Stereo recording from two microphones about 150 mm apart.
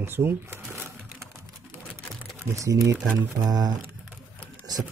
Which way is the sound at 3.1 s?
25° right (ahead or behind).